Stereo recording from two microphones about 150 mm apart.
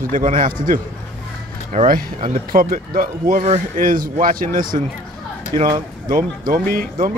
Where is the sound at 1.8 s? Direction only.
65° right (ahead or behind).